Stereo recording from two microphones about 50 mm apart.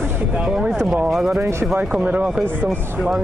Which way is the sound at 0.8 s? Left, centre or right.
Centre.